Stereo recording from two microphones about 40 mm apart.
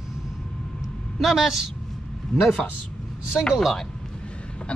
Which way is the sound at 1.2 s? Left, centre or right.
Centre.